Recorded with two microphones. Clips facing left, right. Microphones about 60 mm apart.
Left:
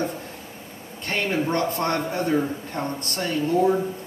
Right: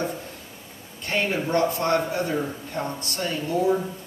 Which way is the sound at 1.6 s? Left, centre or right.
Left.